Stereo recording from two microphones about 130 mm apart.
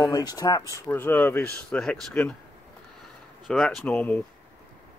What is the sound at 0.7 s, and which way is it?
Speech, 15° left (ahead or behind).